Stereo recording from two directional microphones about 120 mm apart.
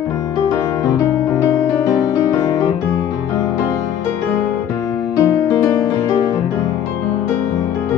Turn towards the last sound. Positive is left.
turn(degrees=25)  # may be behind; listen again after turning